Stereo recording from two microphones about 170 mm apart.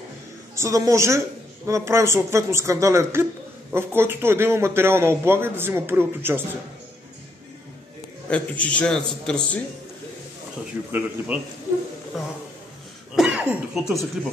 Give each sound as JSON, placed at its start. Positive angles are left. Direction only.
{"t": 0.6, "sound": "a man's voice", "side_deg": -20}
{"t": 8.3, "sound": "a man's voice", "side_deg": 5}
{"t": 10.8, "sound": "a man's voice", "side_deg": -10}